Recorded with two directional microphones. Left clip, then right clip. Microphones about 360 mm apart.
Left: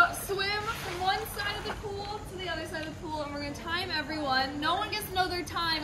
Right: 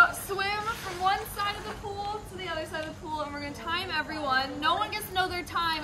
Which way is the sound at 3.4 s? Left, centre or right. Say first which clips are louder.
Right 1 dB; centre.